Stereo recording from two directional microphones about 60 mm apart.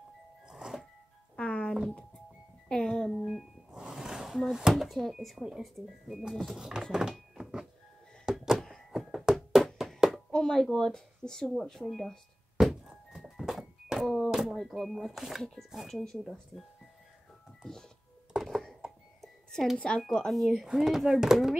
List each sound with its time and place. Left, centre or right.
0.5 s music: centre
1.3 s music: centre
3.3 s speech: centre
6.9 s a sound: centre
8.4 s thunk: centre
8.9 s knock: centre
9.9 s a sound: centre
10.3 s speech: centre
11.9 s a sound: centre
14.0 s speech: centre
17.6 s music: centre
18.3 s a sound: centre
19.2 s music: centre
20.2 s speech: centre